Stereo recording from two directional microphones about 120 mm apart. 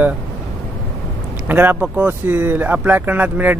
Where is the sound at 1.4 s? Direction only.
15° right (ahead or behind).